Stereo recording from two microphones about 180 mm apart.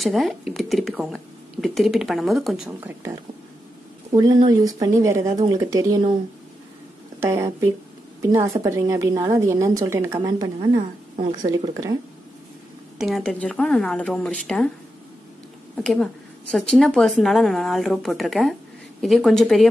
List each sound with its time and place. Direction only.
0.0 s speech: centre (ahead or behind)
4.1 s speech: 20° right (ahead or behind)
7.2 s a woman's voice: 15° right (ahead or behind)
13.0 s speech: centre (ahead or behind)
15.7 s speech: 5° left (ahead or behind)